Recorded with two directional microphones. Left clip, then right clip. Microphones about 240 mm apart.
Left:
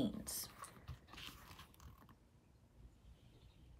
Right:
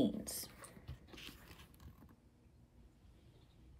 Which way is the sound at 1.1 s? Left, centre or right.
Centre.